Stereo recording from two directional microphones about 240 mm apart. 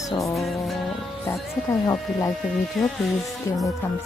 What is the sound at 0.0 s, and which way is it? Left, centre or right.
Music, centre.